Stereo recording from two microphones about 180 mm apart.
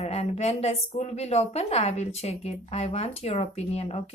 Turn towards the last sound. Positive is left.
turn(degrees=35)  # may be behind; listen again after turning